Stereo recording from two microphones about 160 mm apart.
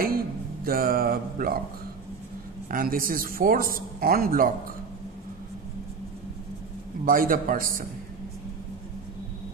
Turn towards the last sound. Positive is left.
turn(degrees=-60)  # may be behind; listen again after turning